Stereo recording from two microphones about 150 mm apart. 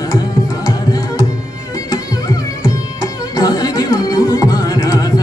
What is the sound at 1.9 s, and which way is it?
Music, 25° left (ahead or behind).